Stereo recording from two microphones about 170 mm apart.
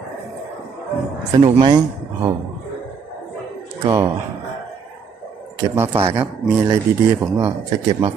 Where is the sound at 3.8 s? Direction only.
20° right (ahead or behind).